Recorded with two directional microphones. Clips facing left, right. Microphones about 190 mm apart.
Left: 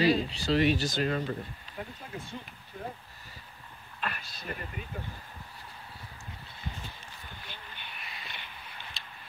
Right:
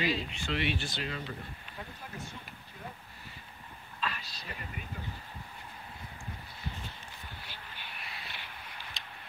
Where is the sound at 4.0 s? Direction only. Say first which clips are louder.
Even; 55° left (ahead or behind).